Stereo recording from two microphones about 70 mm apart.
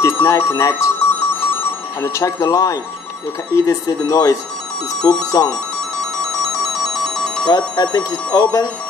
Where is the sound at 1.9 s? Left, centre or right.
Left.